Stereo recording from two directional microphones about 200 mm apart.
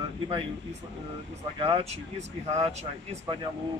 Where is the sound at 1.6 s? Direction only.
30° right (ahead or behind).